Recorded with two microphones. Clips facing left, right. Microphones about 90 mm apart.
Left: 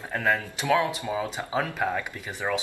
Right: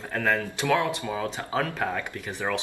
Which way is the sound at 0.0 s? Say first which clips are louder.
Even; 10° left (ahead or behind).